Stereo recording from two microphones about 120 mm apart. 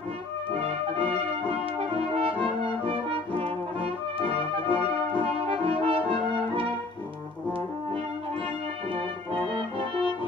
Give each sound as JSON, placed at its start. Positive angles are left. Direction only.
{"t": 0.6, "sound": "brass instrument", "side_deg": -50}
{"t": 9.5, "sound": "brass instrument", "side_deg": -50}